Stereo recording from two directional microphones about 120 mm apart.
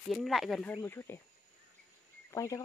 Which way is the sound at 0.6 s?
15° left (ahead or behind).